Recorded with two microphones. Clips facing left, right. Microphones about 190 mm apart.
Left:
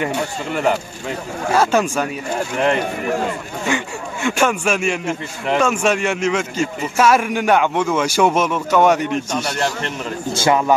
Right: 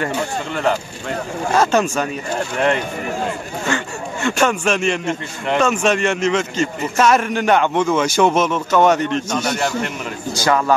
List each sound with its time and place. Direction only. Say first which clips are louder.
0.0 s a man's voice: even; 10° left (ahead or behind)
10.3 s a man's voice: left 1 dB; 20° left (ahead or behind)